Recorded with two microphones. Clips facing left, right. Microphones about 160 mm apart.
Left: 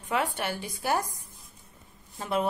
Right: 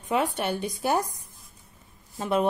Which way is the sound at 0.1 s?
20° right (ahead or behind).